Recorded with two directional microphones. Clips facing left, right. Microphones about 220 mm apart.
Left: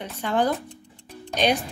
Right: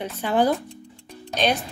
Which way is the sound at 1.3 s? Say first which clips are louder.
Left 1 dB; 15° left (ahead or behind).